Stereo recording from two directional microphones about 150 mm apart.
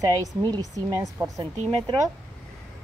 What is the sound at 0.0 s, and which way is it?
Speech, 25° right (ahead or behind).